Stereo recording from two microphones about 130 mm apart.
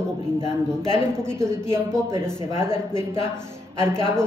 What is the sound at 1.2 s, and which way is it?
Speech, 20° right (ahead or behind).